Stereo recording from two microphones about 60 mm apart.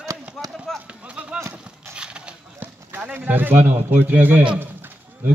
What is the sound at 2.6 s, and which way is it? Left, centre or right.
Speech, right.